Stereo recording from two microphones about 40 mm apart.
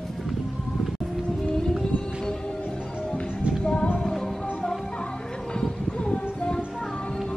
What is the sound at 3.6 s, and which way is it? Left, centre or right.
Music, left.